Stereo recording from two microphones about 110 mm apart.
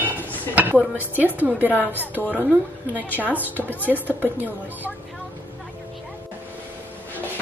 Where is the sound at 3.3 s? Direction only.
15° left (ahead or behind).